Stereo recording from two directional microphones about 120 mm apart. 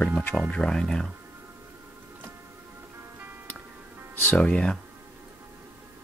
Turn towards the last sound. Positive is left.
turn(degrees=10)  # may be behind; listen again after turning